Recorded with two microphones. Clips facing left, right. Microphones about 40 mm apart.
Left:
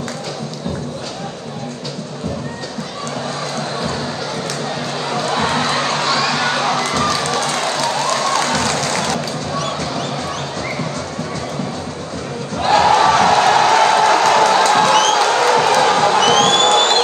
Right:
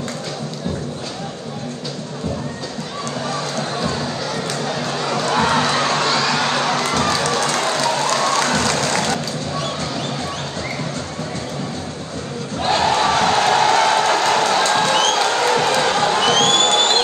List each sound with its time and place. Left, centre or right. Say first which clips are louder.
5.3 s crowd: right 1 dB; right
6.4 s crowd: left 2 dB; left
7.2 s run: even; left
8.5 s applause: even; left
12.7 s music: left 5 dB; left
15.2 s crowd: left 3 dB; left